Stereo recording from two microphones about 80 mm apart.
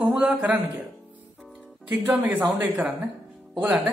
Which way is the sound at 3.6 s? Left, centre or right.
Right.